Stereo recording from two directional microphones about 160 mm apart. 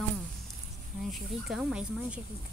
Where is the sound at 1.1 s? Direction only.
5° right (ahead or behind).